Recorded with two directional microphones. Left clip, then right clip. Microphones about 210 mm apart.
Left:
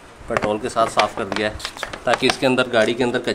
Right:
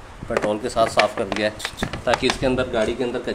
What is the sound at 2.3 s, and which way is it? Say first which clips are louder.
Speech: left 4 dB; 10° left (ahead or behind).